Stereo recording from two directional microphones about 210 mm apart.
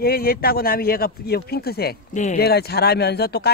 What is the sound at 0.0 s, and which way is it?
A man's voice, 45° left (ahead or behind).